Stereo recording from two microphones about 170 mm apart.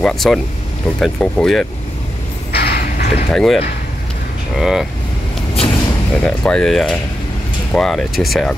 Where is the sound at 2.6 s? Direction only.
65° left (ahead or behind).